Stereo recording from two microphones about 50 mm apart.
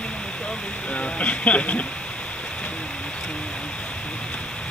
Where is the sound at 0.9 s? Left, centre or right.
Left.